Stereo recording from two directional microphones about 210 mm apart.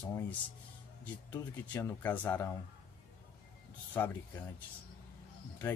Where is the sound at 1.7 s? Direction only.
10° left (ahead or behind).